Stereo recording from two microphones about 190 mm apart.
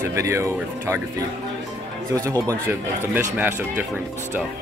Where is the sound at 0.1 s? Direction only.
15° right (ahead or behind).